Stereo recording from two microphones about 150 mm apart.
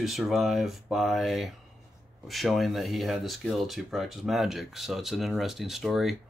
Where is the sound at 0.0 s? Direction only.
Centre (ahead or behind).